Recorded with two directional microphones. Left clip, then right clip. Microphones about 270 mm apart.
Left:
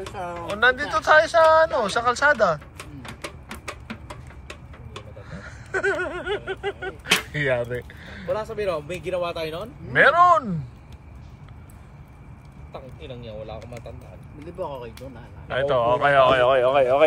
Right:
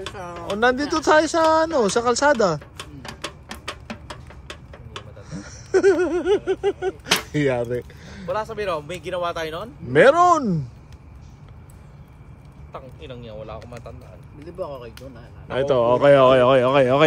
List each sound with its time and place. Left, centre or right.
0.6 s speech: right
2.4 s a sound: right
5.3 s a sound: right
10.0 s speech: right
12.7 s speech: centre
14.6 s speech: centre
15.4 s speech: right